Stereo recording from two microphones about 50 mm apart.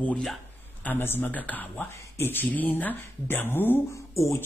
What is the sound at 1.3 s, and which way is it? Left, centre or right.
Speech, left.